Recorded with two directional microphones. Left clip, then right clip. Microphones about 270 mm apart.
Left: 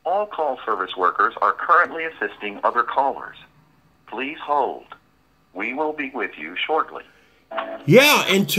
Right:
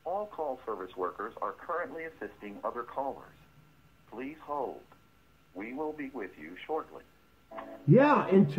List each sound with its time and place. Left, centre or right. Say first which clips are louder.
0.0 s speech: left 13 dB; centre